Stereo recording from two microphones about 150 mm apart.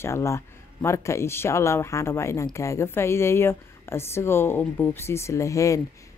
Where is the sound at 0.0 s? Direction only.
20° left (ahead or behind).